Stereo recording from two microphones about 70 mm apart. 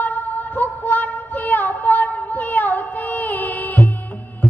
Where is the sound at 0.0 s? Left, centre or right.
Left.